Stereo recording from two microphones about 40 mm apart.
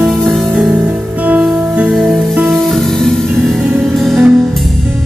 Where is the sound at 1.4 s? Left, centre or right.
Centre.